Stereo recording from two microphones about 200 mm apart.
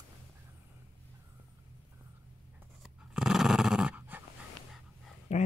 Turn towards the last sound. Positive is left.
turn(degrees=35)  # may be behind; listen again after turning